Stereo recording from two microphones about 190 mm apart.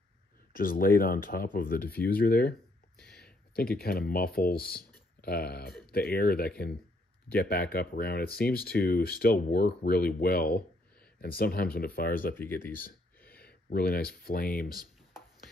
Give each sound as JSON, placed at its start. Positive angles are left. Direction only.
{"t": 0.6, "sound": "speech", "side_deg": 45}
{"t": 3.5, "sound": "speech", "side_deg": 55}
{"t": 13.7, "sound": "speech", "side_deg": 55}